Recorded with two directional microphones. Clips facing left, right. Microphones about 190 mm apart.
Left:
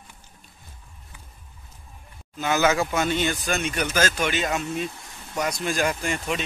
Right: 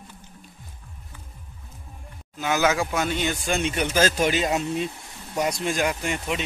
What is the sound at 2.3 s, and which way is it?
Speech, 10° right (ahead or behind).